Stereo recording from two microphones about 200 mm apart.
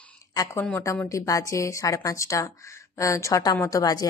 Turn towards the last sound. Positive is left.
turn(degrees=20)  # may be behind; listen again after turning